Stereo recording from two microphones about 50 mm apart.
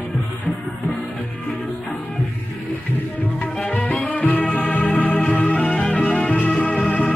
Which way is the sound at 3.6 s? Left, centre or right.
Left.